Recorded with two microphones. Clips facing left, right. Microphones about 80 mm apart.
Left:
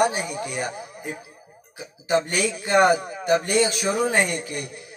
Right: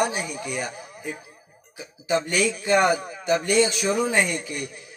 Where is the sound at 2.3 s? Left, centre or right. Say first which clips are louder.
Even; centre.